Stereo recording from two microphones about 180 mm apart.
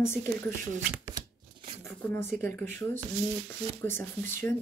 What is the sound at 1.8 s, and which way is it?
Speech, 10° left (ahead or behind).